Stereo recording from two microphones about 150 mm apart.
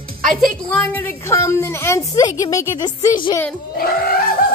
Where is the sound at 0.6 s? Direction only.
10° left (ahead or behind).